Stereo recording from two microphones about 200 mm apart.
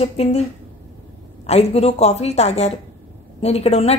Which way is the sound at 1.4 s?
35° left (ahead or behind).